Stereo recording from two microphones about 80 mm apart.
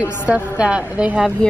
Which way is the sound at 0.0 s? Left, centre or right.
Centre.